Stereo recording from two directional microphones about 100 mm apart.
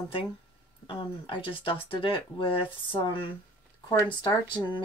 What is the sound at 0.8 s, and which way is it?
Speech, 60° left (ahead or behind).